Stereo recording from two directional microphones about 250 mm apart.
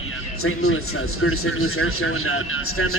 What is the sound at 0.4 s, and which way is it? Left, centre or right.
A man's voice, left.